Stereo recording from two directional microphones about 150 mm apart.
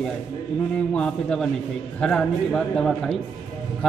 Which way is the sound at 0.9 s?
5° left (ahead or behind).